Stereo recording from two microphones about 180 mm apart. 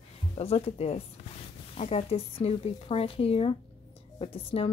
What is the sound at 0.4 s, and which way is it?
Speech, 35° left (ahead or behind).